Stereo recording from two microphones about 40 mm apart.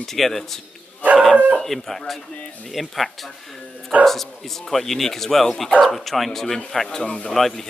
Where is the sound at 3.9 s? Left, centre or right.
Right.